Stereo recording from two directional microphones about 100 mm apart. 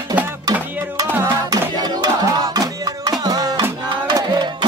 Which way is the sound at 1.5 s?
40° right (ahead or behind).